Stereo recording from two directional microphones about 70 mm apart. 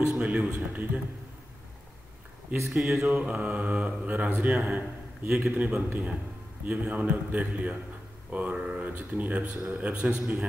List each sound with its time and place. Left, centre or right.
0.1 s speech: centre
2.7 s a man's voice: centre